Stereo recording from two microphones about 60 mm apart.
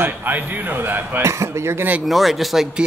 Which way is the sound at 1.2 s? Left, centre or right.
Right.